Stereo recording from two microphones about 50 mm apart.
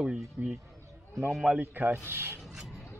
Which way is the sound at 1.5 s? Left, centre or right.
Right.